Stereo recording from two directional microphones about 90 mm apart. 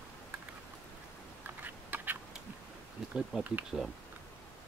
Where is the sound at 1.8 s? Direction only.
20° right (ahead or behind).